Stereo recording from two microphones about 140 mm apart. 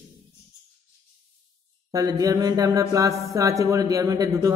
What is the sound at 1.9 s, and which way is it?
A man's voice, 25° right (ahead or behind).